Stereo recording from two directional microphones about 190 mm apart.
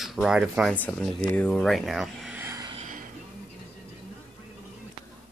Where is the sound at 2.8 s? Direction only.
45° right (ahead or behind).